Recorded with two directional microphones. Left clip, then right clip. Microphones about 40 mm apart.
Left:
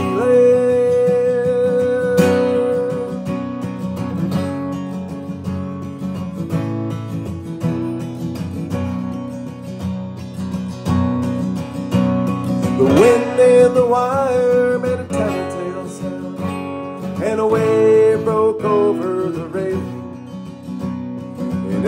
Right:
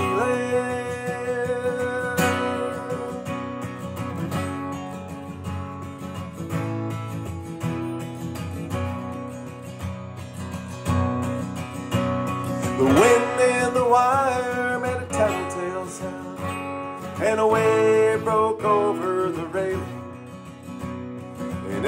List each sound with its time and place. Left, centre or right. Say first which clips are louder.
0.2 s music: left 11 dB; centre
0.8 s music: left 13 dB; left
2.1 s music: left 8 dB; left
11.3 s music: left 6 dB; left
14.7 s music: left 6 dB; right
17.2 s music: left 2 dB; centre
17.5 s music: left 5 dB; left
17.8 s music: left 10 dB; left
18.1 s music: left 5 dB; left
18.9 s music: left 3 dB; left
21.5 s music: left 6 dB; left